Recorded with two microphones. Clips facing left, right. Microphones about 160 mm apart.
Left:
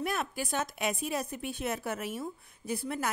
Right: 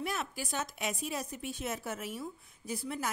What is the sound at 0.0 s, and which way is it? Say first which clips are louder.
A woman's voice: left 4 dB; 55° left (ahead or behind).